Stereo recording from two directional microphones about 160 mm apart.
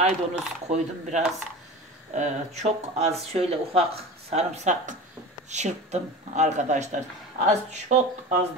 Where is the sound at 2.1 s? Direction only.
45° right (ahead or behind).